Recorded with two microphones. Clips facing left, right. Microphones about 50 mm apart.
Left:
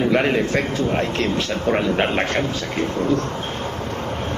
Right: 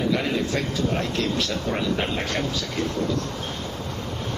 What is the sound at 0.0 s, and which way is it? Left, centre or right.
A man's voice, left.